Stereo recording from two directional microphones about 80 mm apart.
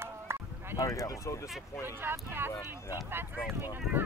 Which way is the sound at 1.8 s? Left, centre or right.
Right.